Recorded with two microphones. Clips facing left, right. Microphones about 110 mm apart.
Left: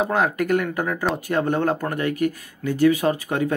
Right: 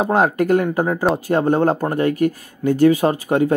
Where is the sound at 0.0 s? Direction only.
35° right (ahead or behind).